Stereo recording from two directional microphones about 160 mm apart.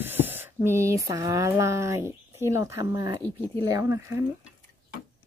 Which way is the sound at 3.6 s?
20° right (ahead or behind).